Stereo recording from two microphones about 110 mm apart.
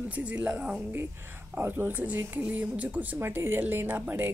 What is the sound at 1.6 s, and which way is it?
Speech, 20° right (ahead or behind).